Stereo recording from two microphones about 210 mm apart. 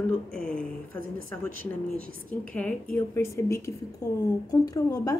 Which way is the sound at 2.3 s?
5° left (ahead or behind).